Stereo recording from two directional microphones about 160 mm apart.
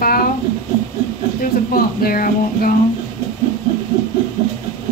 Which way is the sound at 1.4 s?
65° left (ahead or behind).